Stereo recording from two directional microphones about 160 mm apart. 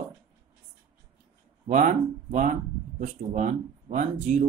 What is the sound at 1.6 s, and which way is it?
Speech, 50° right (ahead or behind).